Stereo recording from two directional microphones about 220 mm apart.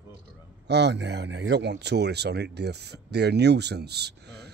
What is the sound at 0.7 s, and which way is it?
Speech, 50° right (ahead or behind).